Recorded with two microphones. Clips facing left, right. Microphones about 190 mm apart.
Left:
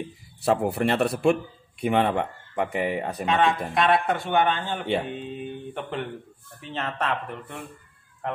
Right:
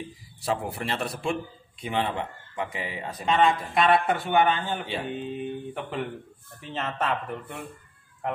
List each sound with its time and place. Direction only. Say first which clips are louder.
0.5 s a man's voice: left 7 dB; 60° left (ahead or behind)
3.3 s speech: right 1 dB; centre (ahead or behind)